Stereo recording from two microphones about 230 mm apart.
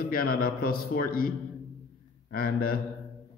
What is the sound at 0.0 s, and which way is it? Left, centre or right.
Speech, left.